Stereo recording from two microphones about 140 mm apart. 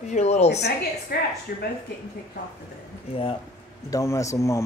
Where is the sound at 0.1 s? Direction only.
55° left (ahead or behind).